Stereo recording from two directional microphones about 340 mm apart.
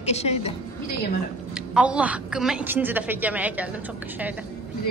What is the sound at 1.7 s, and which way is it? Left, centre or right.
A man's voice, centre.